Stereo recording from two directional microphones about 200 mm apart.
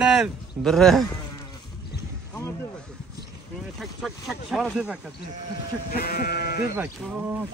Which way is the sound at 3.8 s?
Centre (ahead or behind).